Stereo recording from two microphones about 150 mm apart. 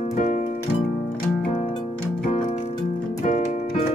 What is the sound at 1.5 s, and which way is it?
Music, 40° left (ahead or behind).